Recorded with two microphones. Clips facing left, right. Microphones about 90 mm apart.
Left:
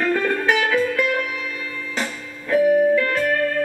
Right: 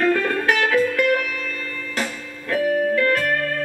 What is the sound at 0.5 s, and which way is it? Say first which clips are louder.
Music: right 1 dB; 10° left (ahead or behind).